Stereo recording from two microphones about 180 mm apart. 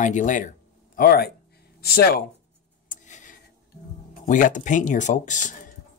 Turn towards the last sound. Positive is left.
turn(degrees=45)  # may be behind; listen again after turning